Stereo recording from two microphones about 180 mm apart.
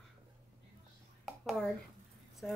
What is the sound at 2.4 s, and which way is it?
Speech, 5° left (ahead or behind).